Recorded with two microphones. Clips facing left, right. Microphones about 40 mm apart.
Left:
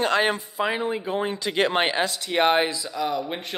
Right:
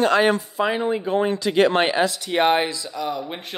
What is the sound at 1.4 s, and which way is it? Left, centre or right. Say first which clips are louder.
Speech: right 3 dB; centre.